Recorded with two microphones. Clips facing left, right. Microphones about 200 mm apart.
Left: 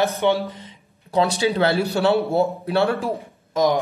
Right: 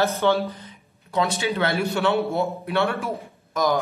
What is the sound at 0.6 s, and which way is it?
Speech, 30° left (ahead or behind).